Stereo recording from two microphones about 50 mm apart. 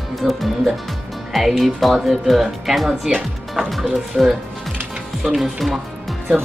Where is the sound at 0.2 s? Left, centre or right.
Centre.